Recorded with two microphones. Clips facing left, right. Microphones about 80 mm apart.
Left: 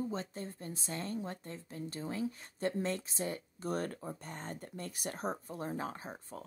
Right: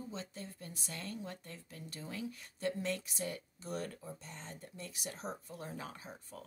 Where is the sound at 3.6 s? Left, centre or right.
Left.